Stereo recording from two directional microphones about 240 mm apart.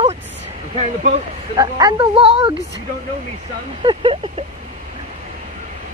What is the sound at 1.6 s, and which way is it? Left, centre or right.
Speech, centre.